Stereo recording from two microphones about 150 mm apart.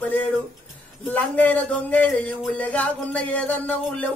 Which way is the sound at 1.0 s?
10° left (ahead or behind).